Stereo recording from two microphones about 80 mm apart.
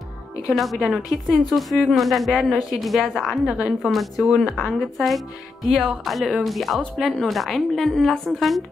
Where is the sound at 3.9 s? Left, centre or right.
Centre.